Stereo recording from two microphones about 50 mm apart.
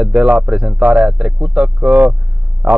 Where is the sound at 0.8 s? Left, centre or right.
Right.